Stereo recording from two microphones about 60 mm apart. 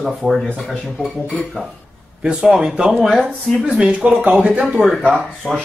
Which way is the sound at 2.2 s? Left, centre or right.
Centre.